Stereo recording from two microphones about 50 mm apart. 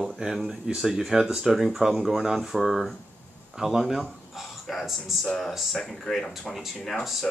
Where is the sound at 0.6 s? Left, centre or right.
Centre.